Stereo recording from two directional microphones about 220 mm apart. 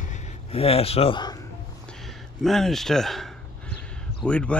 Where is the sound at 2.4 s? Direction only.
Centre (ahead or behind).